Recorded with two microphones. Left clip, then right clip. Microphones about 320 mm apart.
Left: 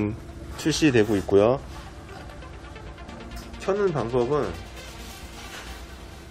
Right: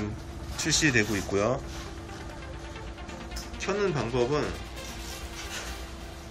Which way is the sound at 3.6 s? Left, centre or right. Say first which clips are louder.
Left 4 dB; left.